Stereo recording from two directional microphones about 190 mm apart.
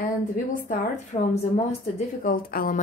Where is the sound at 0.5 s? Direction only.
45° left (ahead or behind).